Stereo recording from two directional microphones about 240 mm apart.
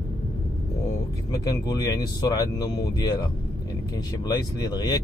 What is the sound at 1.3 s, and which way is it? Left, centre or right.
Speech, centre.